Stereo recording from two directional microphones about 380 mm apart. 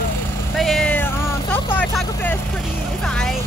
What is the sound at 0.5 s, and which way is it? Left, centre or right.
Vehicle, centre.